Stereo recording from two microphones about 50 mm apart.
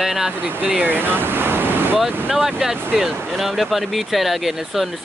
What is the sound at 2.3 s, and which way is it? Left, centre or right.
Speech, centre.